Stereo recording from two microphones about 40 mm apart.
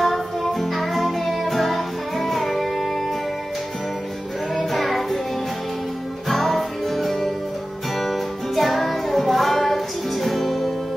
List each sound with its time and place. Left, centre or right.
0.0 s music: centre
4.6 s child singing: centre
6.2 s music: centre